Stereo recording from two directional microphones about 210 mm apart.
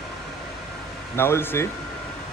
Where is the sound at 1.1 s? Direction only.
10° left (ahead or behind).